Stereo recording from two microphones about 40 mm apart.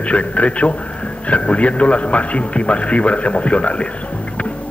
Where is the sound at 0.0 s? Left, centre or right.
Left.